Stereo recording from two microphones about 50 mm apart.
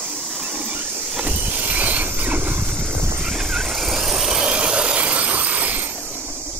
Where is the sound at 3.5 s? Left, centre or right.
Centre.